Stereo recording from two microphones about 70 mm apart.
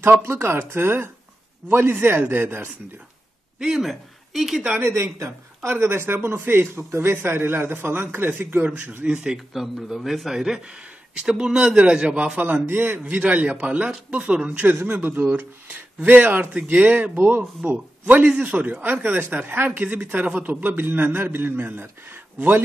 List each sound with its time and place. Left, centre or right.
0.2 s speech: right
3.5 s speech: centre
4.7 s a man's voice: right; by 12.4 s centre
12.4 s a man's voice: right
14.9 s a man's voice: right